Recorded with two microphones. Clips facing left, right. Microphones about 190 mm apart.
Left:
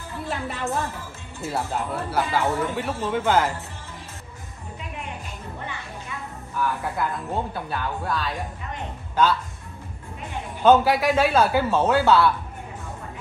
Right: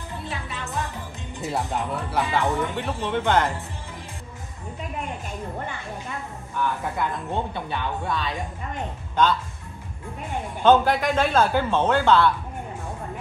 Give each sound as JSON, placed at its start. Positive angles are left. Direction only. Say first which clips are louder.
{"t": 0.3, "sound": "music", "louder": "left 8 dB", "side_deg": 55}
{"t": 1.4, "sound": "speech", "louder": "even", "side_deg": 0}
{"t": 6.5, "sound": "speech", "louder": "even", "side_deg": 5}
{"t": 10.6, "sound": "speech", "louder": "left 1 dB", "side_deg": 5}